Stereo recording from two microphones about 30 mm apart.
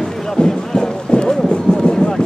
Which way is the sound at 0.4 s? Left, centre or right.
Left.